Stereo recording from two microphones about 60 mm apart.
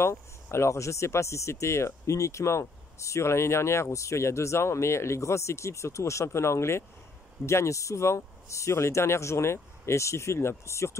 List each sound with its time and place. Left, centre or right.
0.0 s speech: left